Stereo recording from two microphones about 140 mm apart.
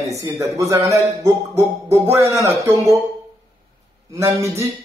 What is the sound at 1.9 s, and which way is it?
Speech, 20° right (ahead or behind).